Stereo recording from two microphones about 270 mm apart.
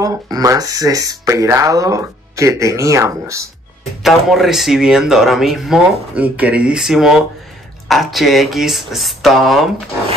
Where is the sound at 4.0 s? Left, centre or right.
Centre.